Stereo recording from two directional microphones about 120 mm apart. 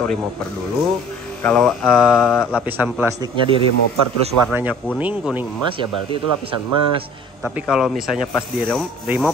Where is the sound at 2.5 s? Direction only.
15° right (ahead or behind).